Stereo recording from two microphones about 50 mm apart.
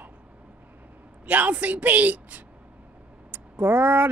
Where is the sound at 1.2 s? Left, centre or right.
Right.